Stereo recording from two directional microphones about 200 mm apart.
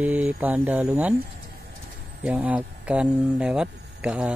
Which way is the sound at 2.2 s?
5° right (ahead or behind).